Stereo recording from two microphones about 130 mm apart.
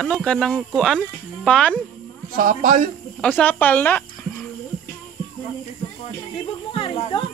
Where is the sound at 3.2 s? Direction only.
10° left (ahead or behind).